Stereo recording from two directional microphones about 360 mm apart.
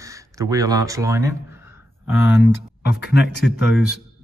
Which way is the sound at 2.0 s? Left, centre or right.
Left.